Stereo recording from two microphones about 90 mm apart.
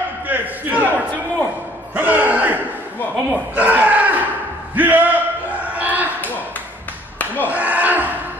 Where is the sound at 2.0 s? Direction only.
20° right (ahead or behind).